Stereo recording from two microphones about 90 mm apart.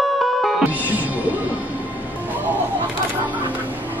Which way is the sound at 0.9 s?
20° right (ahead or behind).